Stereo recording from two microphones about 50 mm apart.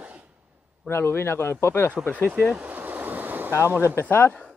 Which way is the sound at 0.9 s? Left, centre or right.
Left.